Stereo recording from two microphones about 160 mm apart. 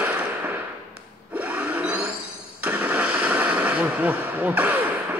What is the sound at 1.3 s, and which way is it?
Wood, 10° right (ahead or behind).